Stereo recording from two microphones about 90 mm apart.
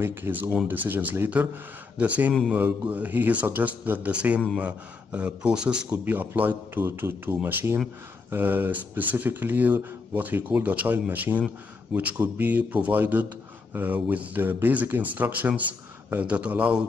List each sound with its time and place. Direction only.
0.0 s a man's voice: 25° right (ahead or behind)